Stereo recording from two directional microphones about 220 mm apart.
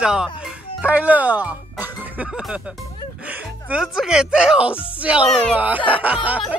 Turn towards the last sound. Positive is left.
turn(degrees=-5)  # may be behind; listen again after turning